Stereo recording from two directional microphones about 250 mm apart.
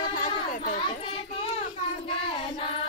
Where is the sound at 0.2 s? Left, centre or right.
Left.